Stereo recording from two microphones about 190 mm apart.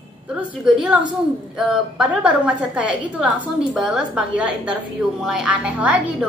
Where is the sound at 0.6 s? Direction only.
5° right (ahead or behind).